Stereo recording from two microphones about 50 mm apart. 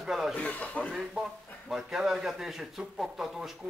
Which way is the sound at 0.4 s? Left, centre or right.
Left.